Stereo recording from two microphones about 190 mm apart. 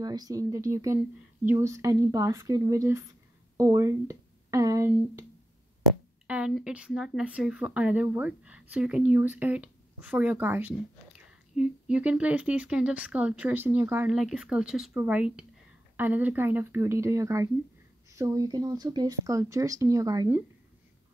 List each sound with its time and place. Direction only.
0.0 s a woman's voice: 20° right (ahead or behind)
6.2 s a woman's voice: 5° right (ahead or behind)